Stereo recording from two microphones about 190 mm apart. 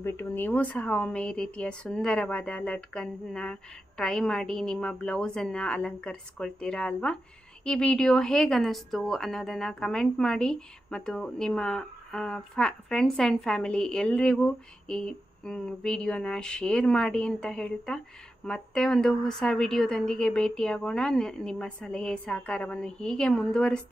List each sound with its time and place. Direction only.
0.0 s a woman's voice: 10° left (ahead or behind)